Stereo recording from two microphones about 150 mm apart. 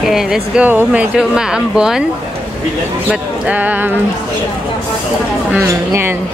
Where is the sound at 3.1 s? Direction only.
10° right (ahead or behind).